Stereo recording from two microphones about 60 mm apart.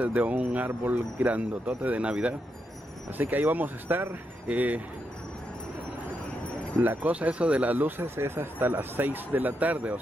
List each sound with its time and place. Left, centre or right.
0.0 s speech: right
3.2 s speech: right
6.8 s speech: right